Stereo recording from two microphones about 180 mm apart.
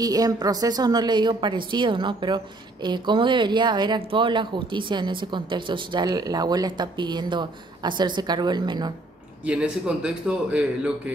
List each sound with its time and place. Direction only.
0.0 s a woman's voice: 20° right (ahead or behind)
9.4 s a man's voice: 5° right (ahead or behind)